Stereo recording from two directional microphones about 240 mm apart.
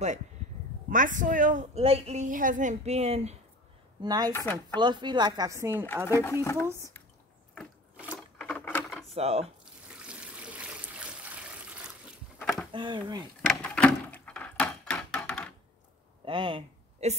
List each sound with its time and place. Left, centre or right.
0.8 s a woman's voice: right
4.0 s speech: centre
4.3 s speech: centre
4.7 s speech: centre
6.0 s speech: centre
7.5 s a sound: centre
9.1 s speech: right
10.0 s water: centre
12.4 s a sound: centre
12.7 s speech: centre
13.5 s a sound: centre
16.3 s a sound: right